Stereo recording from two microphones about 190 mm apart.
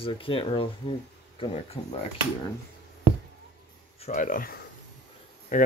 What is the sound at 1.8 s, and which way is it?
Speech, 30° left (ahead or behind).